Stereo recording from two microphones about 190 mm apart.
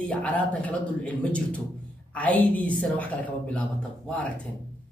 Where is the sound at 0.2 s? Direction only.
10° left (ahead or behind).